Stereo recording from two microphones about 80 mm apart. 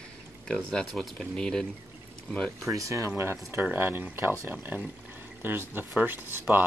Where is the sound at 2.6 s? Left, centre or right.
Right.